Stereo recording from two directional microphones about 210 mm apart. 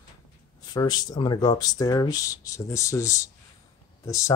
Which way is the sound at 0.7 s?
20° left (ahead or behind).